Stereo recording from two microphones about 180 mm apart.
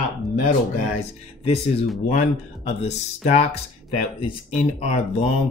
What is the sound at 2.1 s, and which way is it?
Speech, 40° left (ahead or behind).